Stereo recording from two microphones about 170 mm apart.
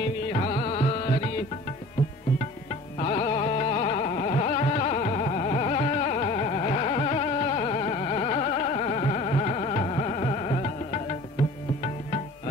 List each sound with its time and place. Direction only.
0.3 s music: 40° left (ahead or behind)
3.0 s carnatic music: 35° left (ahead or behind)